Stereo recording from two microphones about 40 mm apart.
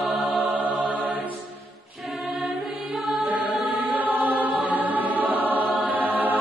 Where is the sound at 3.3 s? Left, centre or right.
Right.